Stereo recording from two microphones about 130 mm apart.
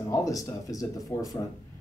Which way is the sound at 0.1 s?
25° left (ahead or behind).